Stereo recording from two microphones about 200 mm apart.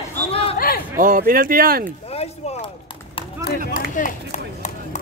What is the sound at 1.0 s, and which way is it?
Speech, 45° right (ahead or behind).